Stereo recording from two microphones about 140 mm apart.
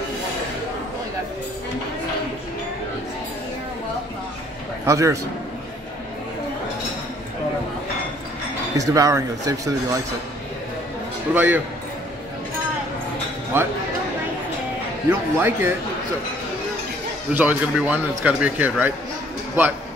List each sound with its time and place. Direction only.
4.8 s speech: 20° right (ahead or behind)
8.7 s speech: 25° right (ahead or behind)
11.3 s a man's voice: 15° right (ahead or behind)
13.5 s a man's voice: 15° right (ahead or behind)
15.0 s a man's voice: 15° right (ahead or behind)
17.3 s a man's voice: 10° right (ahead or behind)